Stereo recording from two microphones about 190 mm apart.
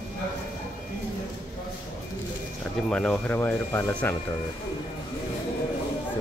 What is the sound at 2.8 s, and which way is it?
Speech, 5° left (ahead or behind).